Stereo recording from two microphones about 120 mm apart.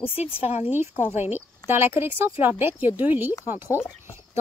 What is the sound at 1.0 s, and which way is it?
Speech, 15° right (ahead or behind).